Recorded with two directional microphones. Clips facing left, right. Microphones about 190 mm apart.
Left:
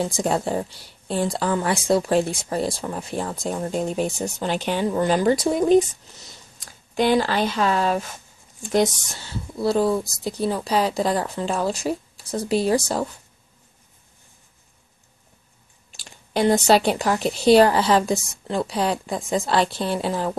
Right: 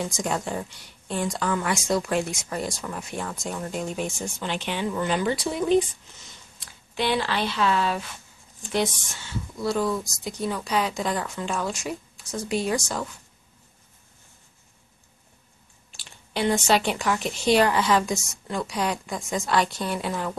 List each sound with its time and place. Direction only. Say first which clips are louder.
0.0 s a woman's voice: left 5 dB; 30° left (ahead or behind)
16.0 s a woman's voice: left 5 dB; 40° left (ahead or behind)